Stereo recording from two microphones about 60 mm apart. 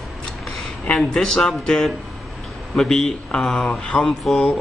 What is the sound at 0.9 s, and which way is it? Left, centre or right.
Speech, centre.